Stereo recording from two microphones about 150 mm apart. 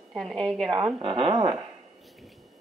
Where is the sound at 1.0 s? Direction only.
40° right (ahead or behind).